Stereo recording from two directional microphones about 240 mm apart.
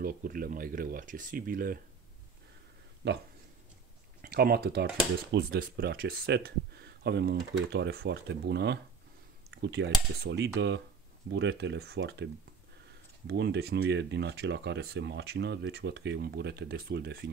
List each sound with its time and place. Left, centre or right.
0.0 s speech: right
3.0 s speech: right
13.3 s speech: right